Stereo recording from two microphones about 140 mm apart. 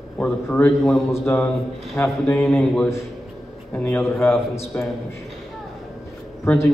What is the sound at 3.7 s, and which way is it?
A man's voice, 15° left (ahead or behind).